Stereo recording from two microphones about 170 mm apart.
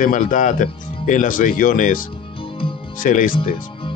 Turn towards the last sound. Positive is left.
turn(degrees=50)  # may be behind; listen again after turning